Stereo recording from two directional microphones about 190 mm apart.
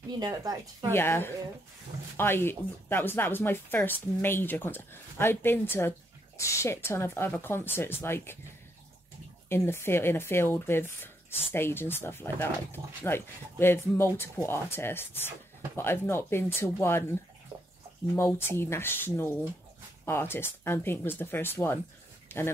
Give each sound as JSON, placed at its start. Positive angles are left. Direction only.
{"t": 0.2, "sound": "speech", "side_deg": -20}
{"t": 0.9, "sound": "speech", "side_deg": 10}
{"t": 9.5, "sound": "speech", "side_deg": 10}